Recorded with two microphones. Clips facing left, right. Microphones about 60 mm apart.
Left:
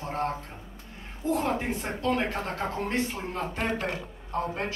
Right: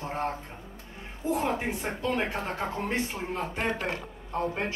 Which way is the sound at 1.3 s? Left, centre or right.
Centre.